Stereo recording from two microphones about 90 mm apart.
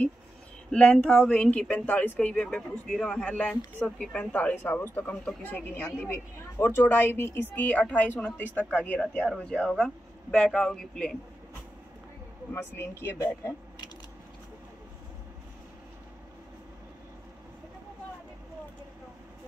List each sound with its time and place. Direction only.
0.7 s a woman's voice: 10° left (ahead or behind)
12.7 s a woman's voice: 30° left (ahead or behind)